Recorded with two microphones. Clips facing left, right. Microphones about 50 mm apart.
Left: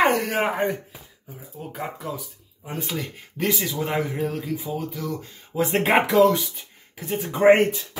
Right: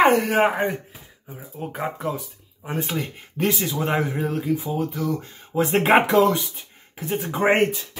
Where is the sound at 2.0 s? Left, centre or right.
Right.